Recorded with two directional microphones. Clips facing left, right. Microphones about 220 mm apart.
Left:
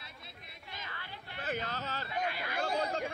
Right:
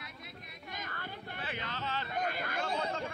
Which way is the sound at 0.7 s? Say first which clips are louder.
Right 4 dB; 50° right (ahead or behind).